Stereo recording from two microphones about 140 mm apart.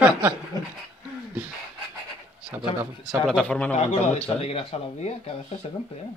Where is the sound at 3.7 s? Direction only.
45° left (ahead or behind).